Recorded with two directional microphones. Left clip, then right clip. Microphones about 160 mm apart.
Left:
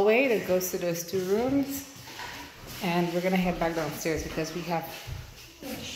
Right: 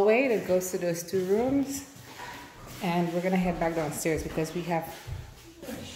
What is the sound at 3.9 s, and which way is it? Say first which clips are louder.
Speech: right 1 dB; 25° right (ahead or behind).